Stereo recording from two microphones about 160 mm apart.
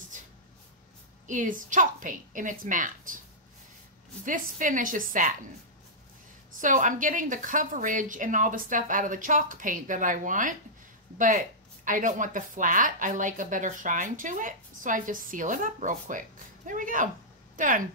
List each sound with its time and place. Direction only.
0.1 s a sound: 50° right (ahead or behind)
1.2 s speech: 55° right (ahead or behind)
4.2 s speech: 55° right (ahead or behind)
6.6 s speech: 55° right (ahead or behind)